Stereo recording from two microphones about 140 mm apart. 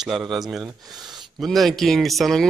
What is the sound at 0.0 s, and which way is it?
Speech, centre (ahead or behind).